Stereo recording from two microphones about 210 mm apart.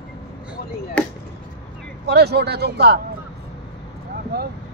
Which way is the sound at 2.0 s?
50° right (ahead or behind).